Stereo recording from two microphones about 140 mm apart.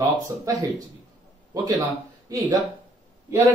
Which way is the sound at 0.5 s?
25° right (ahead or behind).